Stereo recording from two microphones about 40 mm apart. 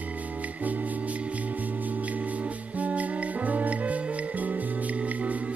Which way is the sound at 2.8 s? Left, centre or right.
Right.